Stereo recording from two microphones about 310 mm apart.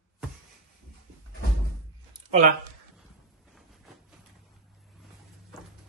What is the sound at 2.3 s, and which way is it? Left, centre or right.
Speech, right.